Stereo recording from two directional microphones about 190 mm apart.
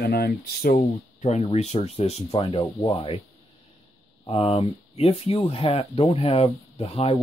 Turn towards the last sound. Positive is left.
turn(degrees=30)  # may be behind; listen again after turning